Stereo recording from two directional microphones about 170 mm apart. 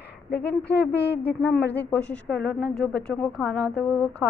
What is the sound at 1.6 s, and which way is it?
Speech, 75° left (ahead or behind).